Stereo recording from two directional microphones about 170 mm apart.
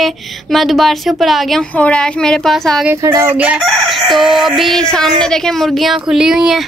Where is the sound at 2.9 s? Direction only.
20° right (ahead or behind).